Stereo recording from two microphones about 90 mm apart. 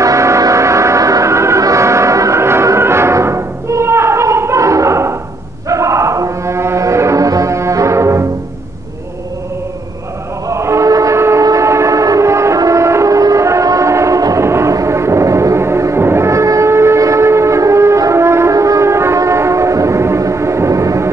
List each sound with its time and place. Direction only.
0.0 s music: 35° right (ahead or behind)
10.5 s music: 35° right (ahead or behind)
11.4 s train: 35° right (ahead or behind)